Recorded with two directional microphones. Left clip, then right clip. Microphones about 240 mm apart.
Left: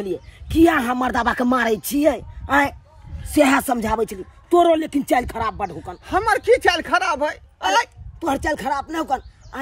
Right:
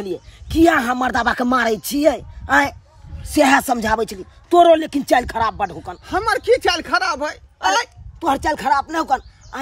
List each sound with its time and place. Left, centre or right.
0.0 s speech: centre
8.3 s speech: centre